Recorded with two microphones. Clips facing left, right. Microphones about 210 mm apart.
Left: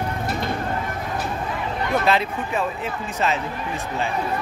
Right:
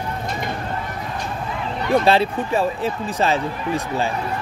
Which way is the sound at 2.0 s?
30° right (ahead or behind).